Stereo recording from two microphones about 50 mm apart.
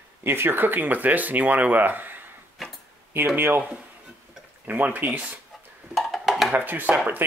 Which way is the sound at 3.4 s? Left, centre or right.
Right.